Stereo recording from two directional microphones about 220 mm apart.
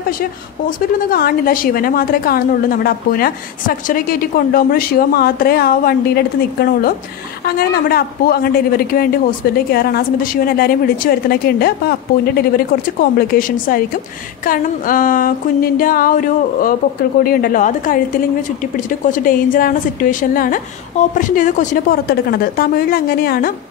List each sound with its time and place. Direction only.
0.2 s a woman's voice: 40° left (ahead or behind)